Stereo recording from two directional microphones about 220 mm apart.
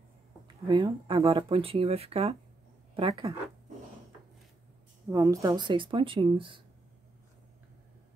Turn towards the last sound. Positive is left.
turn(degrees=-25)  # may be behind; listen again after turning